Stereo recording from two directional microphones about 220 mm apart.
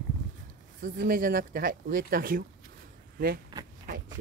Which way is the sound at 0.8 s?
40° right (ahead or behind).